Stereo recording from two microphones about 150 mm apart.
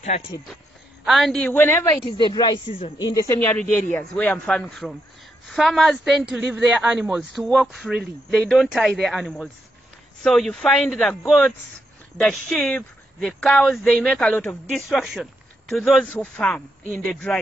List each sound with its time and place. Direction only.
1.0 s a woman's voice: centre (ahead or behind)
2.0 s speech: 30° left (ahead or behind)
3.9 s a man's voice: 10° left (ahead or behind)